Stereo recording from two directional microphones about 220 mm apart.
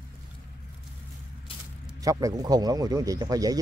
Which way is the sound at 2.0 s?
15° right (ahead or behind).